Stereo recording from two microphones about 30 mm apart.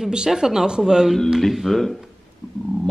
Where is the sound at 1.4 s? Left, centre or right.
Centre.